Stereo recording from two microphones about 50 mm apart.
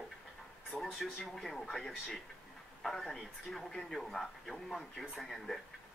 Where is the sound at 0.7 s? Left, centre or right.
Left.